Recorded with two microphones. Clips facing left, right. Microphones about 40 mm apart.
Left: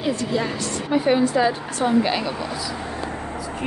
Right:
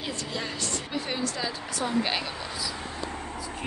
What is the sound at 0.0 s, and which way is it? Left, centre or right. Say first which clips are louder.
Music: left 10 dB; centre.